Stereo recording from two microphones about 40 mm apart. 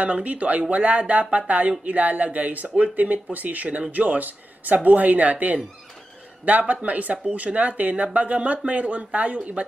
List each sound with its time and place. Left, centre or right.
0.0 s speech: right
6.7 s speech: right